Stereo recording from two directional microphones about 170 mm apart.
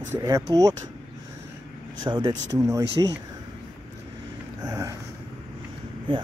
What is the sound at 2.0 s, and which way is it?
Speech, 25° right (ahead or behind).